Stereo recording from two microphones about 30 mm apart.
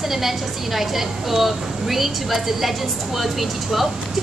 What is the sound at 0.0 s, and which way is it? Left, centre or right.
A woman's voice, centre.